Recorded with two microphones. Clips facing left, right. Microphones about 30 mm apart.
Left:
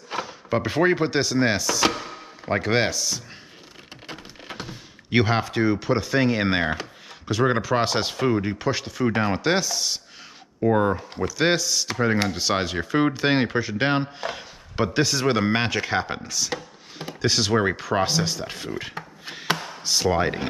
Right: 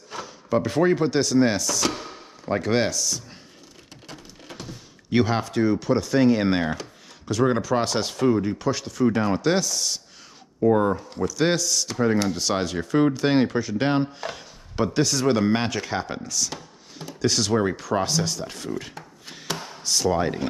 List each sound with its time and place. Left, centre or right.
0.1 s speech: left